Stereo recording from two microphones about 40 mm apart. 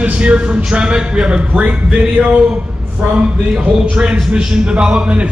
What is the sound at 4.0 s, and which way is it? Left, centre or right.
A man's voice, right.